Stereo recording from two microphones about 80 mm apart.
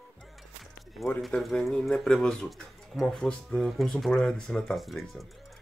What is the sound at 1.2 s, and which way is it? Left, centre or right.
Speech, centre.